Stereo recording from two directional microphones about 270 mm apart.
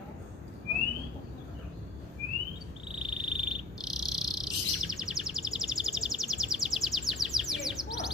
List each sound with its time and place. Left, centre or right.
3.0 s insect: centre